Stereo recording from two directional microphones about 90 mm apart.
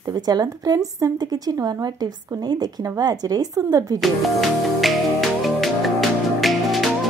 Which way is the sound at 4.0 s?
Centre (ahead or behind).